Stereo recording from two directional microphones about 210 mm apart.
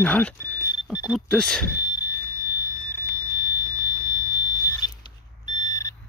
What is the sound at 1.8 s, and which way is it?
Fire alarm, 20° left (ahead or behind).